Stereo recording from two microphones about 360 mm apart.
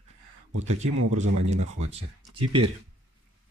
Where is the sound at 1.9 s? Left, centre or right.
Centre.